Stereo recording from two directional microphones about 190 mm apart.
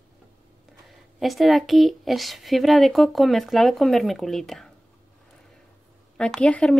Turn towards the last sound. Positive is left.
turn(degrees=5)  # may be behind; listen again after turning